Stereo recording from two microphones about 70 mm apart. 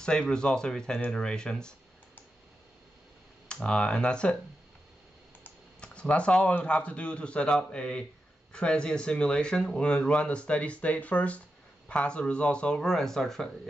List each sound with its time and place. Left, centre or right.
0.0 s speech: centre
3.4 s speech: centre
5.8 s computer keyboard: centre
6.6 s speech: centre